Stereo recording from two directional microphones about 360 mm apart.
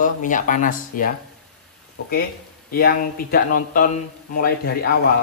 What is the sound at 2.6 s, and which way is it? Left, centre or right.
Speech, left.